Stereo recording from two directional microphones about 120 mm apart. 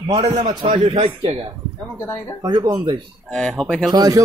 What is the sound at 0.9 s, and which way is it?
Speech, 55° right (ahead or behind).